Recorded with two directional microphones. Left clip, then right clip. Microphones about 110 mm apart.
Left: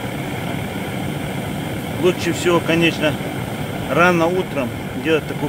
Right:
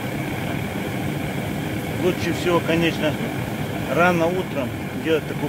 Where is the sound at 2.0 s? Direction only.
50° left (ahead or behind).